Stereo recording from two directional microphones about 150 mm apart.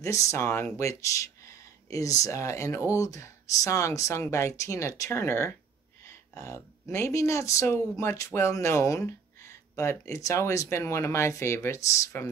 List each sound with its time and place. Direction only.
0.0 s speech: 20° left (ahead or behind)